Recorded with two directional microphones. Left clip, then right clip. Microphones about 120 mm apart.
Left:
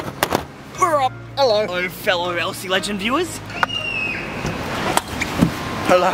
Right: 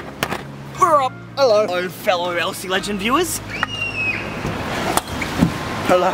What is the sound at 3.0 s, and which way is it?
Speech, 15° right (ahead or behind).